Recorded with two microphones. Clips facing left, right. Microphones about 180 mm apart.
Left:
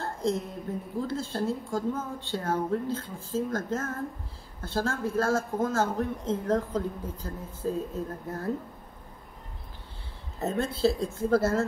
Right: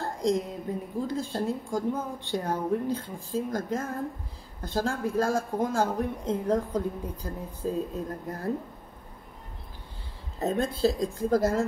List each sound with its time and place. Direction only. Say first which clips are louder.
0.2 s speech: right 3 dB; 15° right (ahead or behind)
10.4 s speech: right 1 dB; 15° right (ahead or behind)